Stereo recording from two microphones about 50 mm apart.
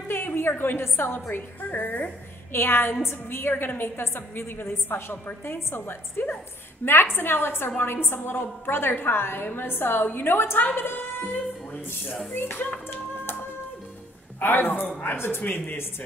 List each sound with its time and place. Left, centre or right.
0.1 s a woman's voice: left
1.3 s a woman's voice: left
12.3 s a woman's voice: left
13.2 s music: left
14.4 s a woman's voice: left
15.4 s a woman's voice: left